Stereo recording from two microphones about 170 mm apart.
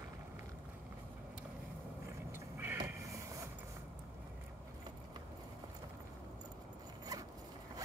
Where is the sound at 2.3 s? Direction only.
15° right (ahead or behind).